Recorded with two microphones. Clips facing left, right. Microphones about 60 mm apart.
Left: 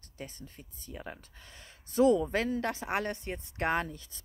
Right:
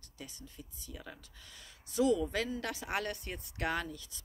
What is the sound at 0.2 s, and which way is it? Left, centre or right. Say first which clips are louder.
Speech: left 4 dB; left.